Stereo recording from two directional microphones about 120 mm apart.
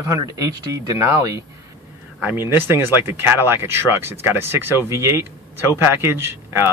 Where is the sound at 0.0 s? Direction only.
30° right (ahead or behind).